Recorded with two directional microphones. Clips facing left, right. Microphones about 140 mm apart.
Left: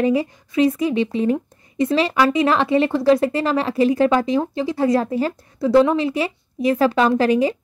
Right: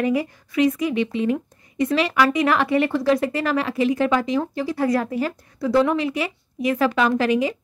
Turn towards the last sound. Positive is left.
turn(degrees=35)  # may be behind; listen again after turning